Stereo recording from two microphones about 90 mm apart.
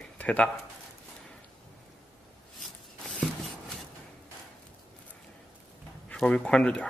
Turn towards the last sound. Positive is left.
turn(degrees=10)  # may be behind; listen again after turning